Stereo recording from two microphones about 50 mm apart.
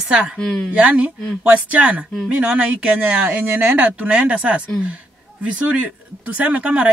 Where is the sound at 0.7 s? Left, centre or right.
Right.